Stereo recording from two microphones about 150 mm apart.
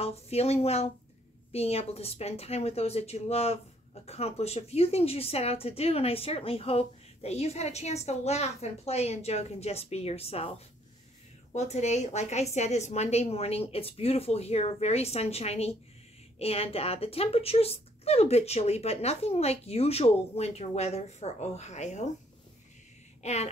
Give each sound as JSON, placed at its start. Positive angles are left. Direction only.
{"t": 0.0, "sound": "a woman's voice", "side_deg": 45}
{"t": 11.5, "sound": "a woman's voice", "side_deg": 45}
{"t": 23.2, "sound": "a woman's voice", "side_deg": 45}